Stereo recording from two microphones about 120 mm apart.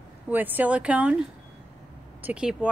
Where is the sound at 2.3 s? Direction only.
10° right (ahead or behind).